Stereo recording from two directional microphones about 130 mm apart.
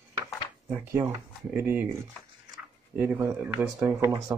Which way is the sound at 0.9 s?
20° right (ahead or behind).